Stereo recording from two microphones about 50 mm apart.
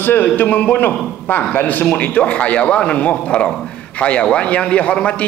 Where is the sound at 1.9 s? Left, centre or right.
Left.